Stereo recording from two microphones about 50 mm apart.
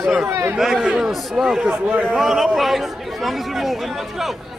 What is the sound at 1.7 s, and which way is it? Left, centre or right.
Speech, right.